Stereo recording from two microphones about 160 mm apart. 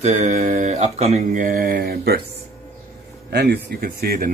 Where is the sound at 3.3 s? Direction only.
90° right; by 4.3 s 65° right (ahead or behind).